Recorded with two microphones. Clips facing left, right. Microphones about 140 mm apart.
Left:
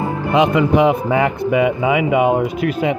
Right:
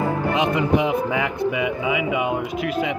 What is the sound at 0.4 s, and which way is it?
Speech, 80° left.